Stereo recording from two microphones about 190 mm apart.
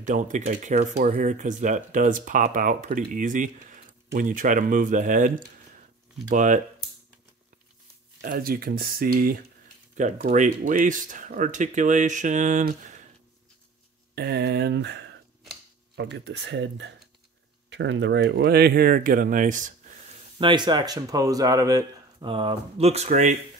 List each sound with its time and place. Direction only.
0.0 s speech: 40° right (ahead or behind)
6.3 s speech: 40° right (ahead or behind)
8.2 s speech: 50° right (ahead or behind)
14.1 s speech: 60° right (ahead or behind); by 20.0 s 45° right (ahead or behind)
20.3 s speech: 25° right (ahead or behind)